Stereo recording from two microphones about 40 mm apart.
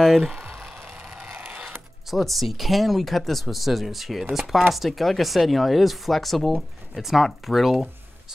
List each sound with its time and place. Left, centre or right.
0.2 s speech: centre
0.9 s vehicle: centre
1.3 s a sound: right
2.0 s speech: centre